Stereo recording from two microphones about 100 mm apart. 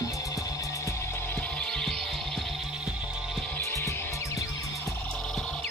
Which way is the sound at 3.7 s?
25° left (ahead or behind).